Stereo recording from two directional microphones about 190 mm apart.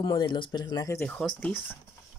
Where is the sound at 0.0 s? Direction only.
25° left (ahead or behind).